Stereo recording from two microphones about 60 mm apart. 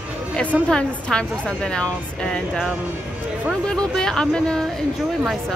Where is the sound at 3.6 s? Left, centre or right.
Centre.